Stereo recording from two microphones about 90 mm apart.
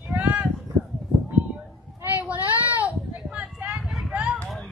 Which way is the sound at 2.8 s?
15° right (ahead or behind).